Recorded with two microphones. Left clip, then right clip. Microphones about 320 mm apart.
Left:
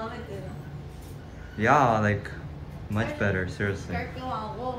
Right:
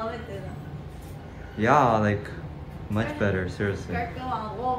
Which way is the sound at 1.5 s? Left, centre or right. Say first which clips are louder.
Right 1 dB; centre.